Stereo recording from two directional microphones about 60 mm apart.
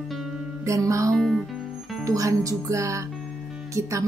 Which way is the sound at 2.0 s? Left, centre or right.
Right.